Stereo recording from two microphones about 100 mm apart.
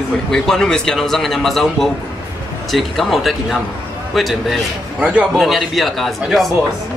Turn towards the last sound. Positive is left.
turn(degrees=0)  # may be behind; listen again after turning